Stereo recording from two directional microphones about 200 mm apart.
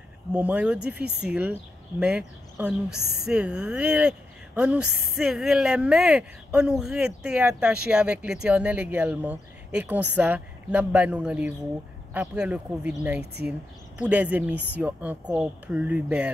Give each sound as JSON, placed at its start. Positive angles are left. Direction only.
{"t": 0.3, "sound": "speech", "side_deg": -5}
{"t": 3.0, "sound": "speech", "side_deg": -55}
{"t": 3.3, "sound": "speech", "side_deg": -5}
{"t": 13.2, "sound": "speech", "side_deg": -55}
{"t": 13.5, "sound": "speech", "side_deg": -5}